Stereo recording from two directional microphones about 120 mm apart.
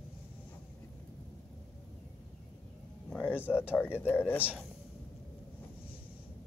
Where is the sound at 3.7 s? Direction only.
20° left (ahead or behind).